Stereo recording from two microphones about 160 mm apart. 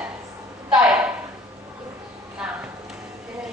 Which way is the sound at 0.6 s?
5° right (ahead or behind).